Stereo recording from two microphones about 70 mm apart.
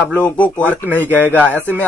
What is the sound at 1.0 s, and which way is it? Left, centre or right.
Speech, right.